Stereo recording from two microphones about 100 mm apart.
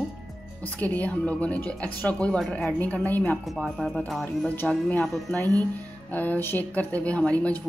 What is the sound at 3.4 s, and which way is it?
A woman's voice, centre (ahead or behind).